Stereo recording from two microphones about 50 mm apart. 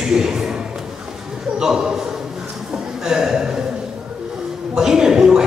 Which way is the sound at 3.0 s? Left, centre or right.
Centre.